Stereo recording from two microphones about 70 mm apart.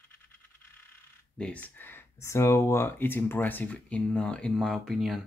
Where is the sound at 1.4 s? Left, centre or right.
Left.